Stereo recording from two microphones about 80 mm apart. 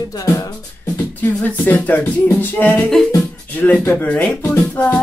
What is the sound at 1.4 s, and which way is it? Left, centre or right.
Speech, left.